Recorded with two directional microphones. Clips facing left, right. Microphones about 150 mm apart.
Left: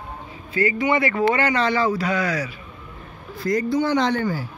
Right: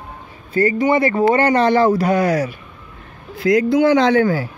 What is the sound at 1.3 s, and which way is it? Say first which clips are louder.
Speech: right 7 dB; 50° right (ahead or behind).